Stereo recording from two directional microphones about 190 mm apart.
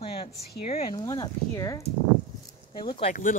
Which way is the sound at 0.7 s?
30° left (ahead or behind).